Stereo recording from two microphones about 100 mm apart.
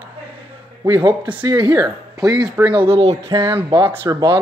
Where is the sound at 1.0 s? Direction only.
15° right (ahead or behind).